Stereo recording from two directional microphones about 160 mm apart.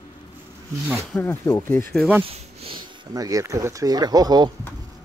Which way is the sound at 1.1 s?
15° left (ahead or behind).